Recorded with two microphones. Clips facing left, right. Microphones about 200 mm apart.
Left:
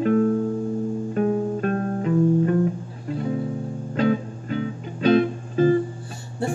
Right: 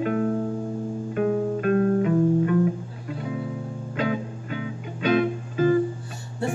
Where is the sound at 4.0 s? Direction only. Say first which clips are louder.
Left 5 dB; 40° left (ahead or behind).